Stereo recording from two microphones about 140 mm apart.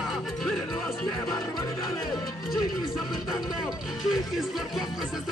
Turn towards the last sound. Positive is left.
turn(degrees=0)  # may be behind; listen again after turning